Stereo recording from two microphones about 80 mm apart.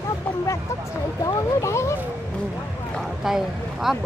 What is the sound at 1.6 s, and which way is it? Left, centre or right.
Speech, left.